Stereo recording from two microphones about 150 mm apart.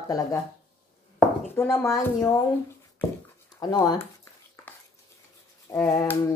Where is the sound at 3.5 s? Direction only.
25° left (ahead or behind).